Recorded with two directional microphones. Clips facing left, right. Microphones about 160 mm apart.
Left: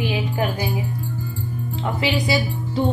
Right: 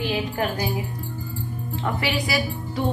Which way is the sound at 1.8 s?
20° left (ahead or behind).